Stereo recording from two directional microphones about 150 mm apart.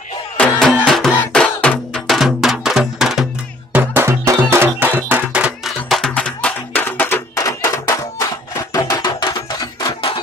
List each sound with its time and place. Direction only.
0.4 s music: centre (ahead or behind)
3.7 s music: 15° right (ahead or behind)
5.9 s music: 5° left (ahead or behind); by 9.3 s 30° left (ahead or behind)